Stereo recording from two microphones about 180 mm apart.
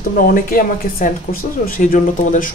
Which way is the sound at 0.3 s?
50° left (ahead or behind).